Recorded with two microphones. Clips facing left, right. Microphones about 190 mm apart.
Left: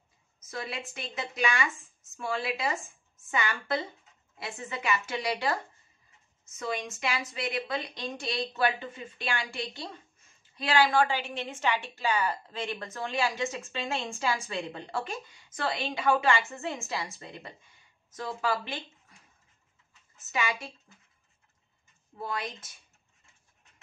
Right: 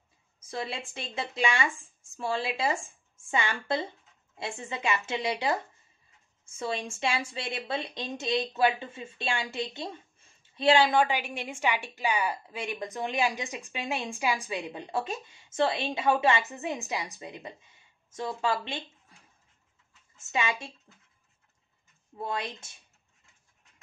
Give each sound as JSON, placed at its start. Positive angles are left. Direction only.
{"t": 0.4, "sound": "a woman's voice", "side_deg": -30}
{"t": 20.2, "sound": "a woman's voice", "side_deg": -25}
{"t": 22.2, "sound": "a woman's voice", "side_deg": -25}